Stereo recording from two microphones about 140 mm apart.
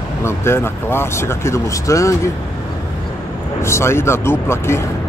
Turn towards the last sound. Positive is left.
turn(degrees=20)  # may be behind; listen again after turning